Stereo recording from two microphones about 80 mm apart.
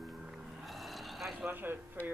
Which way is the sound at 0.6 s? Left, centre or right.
Centre.